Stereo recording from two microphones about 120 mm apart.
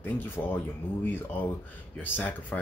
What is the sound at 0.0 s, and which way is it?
Speech, 15° left (ahead or behind).